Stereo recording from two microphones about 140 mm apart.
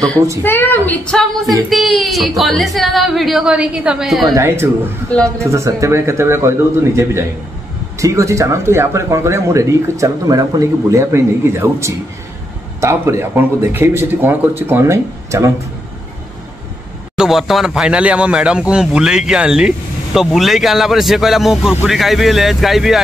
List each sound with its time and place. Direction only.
0.4 s a woman's voice: 15° left (ahead or behind)
1.4 s a woman's voice: centre (ahead or behind)
4.4 s speech: 20° right (ahead or behind)
5.1 s a woman's voice: 10° left (ahead or behind)
5.5 s speech: 20° right (ahead or behind)
17.2 s a woman's voice: centre (ahead or behind)